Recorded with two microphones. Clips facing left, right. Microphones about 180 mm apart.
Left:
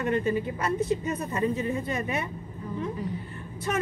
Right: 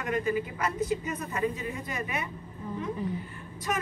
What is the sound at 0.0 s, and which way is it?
Speech, 30° left (ahead or behind).